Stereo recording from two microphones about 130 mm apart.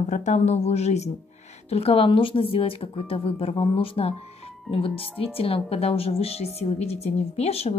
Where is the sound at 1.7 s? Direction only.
50° left (ahead or behind).